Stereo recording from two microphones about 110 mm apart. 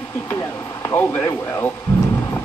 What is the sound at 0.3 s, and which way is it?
Speech, 20° left (ahead or behind).